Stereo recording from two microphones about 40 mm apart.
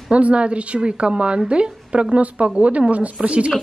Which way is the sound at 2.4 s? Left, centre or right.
Right.